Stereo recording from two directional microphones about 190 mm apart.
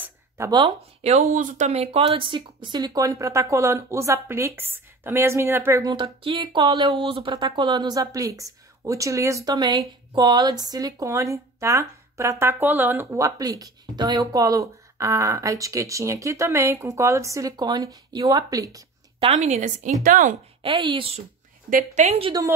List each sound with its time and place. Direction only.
0.5 s speech: 30° right (ahead or behind)
19.1 s a woman's voice: 35° right (ahead or behind)
20.6 s speech: 25° right (ahead or behind)
21.6 s a woman's voice: 40° right (ahead or behind)